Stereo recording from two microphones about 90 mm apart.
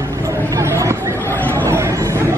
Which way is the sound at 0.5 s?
35° right (ahead or behind).